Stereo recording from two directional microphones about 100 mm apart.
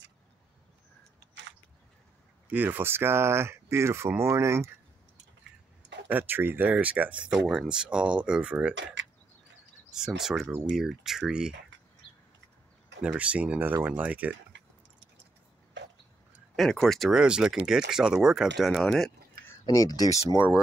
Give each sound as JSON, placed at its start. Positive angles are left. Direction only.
{"t": 2.5, "sound": "speech", "side_deg": -20}
{"t": 6.0, "sound": "speech", "side_deg": -20}
{"t": 9.8, "sound": "speech", "side_deg": -5}
{"t": 13.0, "sound": "speech", "side_deg": -10}
{"t": 16.5, "sound": "speech", "side_deg": 5}
{"t": 19.6, "sound": "speech", "side_deg": 40}